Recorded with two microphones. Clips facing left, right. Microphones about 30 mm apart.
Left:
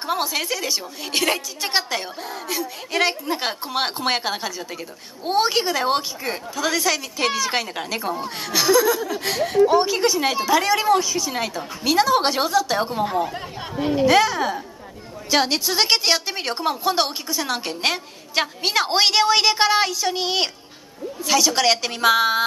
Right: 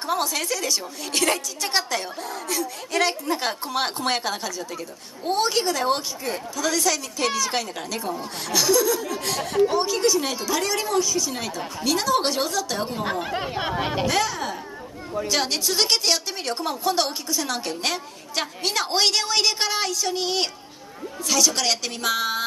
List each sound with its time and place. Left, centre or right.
0.0 s a woman's voice: centre
13.2 s speech: right
14.0 s a woman's voice: centre